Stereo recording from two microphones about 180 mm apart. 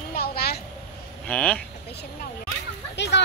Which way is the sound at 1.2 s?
5° left (ahead or behind).